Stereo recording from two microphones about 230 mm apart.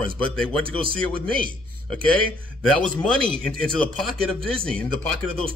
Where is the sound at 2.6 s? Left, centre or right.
Centre.